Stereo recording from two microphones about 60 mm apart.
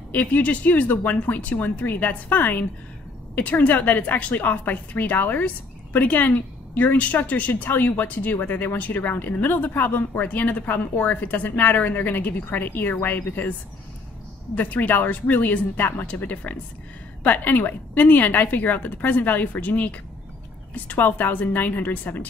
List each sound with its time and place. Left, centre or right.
0.1 s a woman's voice: left